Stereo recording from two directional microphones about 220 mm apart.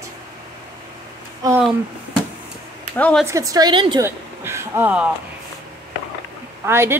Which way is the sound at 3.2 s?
15° right (ahead or behind).